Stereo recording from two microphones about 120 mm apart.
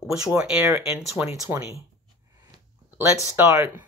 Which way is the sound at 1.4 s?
25° right (ahead or behind).